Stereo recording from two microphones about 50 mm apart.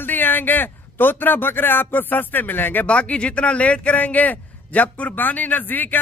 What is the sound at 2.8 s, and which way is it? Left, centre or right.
Speech, left.